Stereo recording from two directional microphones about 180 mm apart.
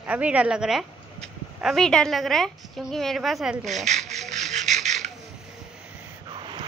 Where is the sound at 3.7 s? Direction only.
40° right (ahead or behind).